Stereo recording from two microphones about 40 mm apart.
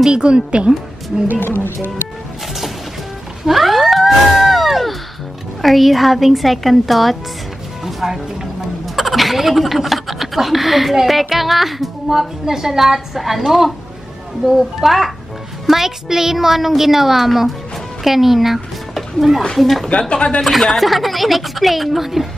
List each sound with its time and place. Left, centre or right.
0.1 s a woman's voice: right
3.4 s a sound: centre
5.6 s a woman's voice: centre
7.8 s music: centre
8.8 s a woman's voice: centre
18.0 s a sound: centre
19.5 s speech: centre
19.9 s speech: left
20.4 s a woman's voice: centre